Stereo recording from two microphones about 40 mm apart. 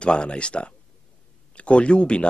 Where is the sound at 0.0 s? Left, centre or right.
Left.